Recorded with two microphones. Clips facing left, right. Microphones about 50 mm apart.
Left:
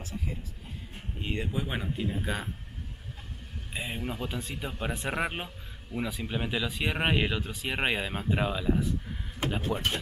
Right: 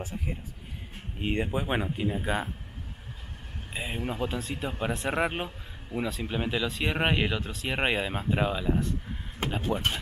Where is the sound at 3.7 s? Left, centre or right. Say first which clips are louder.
Right 1 dB; centre.